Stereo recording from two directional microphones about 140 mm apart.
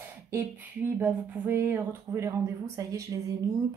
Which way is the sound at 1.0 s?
15° right (ahead or behind).